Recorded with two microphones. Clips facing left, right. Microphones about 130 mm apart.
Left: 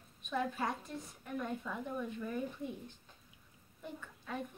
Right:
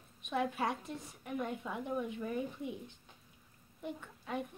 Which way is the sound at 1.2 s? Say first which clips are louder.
Right 2 dB; 15° right (ahead or behind).